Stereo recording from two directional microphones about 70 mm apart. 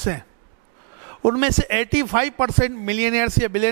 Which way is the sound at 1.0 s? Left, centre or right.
Right.